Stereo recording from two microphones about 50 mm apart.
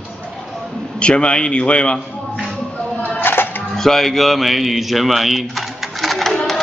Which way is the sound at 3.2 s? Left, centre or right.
Left.